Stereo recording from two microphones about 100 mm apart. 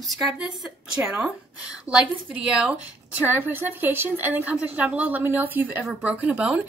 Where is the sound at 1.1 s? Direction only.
10° right (ahead or behind).